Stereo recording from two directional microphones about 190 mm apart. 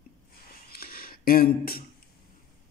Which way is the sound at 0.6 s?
50° left (ahead or behind).